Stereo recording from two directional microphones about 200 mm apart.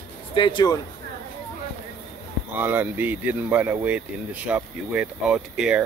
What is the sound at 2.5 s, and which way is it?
Speech, 10° right (ahead or behind).